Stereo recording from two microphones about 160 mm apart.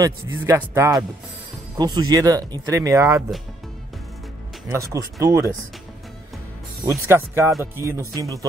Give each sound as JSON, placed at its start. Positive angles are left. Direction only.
{"t": 0.0, "sound": "a man's voice", "side_deg": -15}
{"t": 4.7, "sound": "speech", "side_deg": -20}
{"t": 6.9, "sound": "a man's voice", "side_deg": -15}